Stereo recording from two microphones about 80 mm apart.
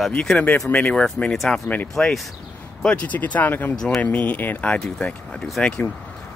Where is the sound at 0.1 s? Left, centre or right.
Centre.